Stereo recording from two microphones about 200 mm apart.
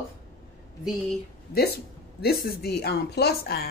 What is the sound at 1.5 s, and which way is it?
A woman's voice, 50° left (ahead or behind).